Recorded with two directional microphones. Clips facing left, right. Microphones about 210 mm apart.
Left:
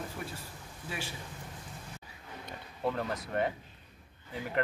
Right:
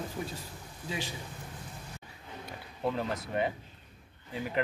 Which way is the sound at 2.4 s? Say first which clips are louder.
Right 1 dB; 5° right (ahead or behind).